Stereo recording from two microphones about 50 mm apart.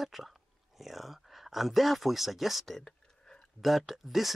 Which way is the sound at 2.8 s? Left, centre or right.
Centre.